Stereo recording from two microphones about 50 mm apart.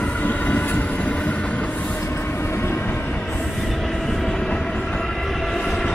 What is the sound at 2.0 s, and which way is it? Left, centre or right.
Train, left.